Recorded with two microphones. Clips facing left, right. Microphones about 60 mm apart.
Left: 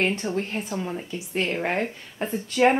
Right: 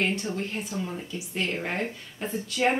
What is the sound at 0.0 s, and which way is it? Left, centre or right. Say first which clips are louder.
Speech: left 3 dB; left.